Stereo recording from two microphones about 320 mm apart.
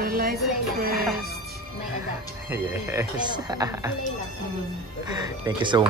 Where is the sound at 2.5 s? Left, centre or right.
Centre.